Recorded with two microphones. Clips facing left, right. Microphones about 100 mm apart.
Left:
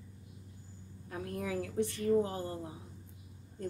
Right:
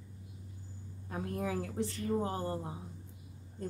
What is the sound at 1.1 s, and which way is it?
A woman's voice, 30° right (ahead or behind).